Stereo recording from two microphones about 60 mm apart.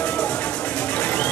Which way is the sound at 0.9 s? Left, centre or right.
Left.